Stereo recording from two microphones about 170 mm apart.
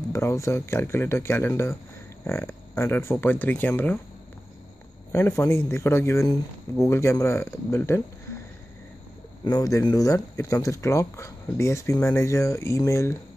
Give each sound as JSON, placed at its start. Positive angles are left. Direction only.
{"t": 0.1, "sound": "speech", "side_deg": 15}
{"t": 5.1, "sound": "speech", "side_deg": 15}
{"t": 9.4, "sound": "speech", "side_deg": 20}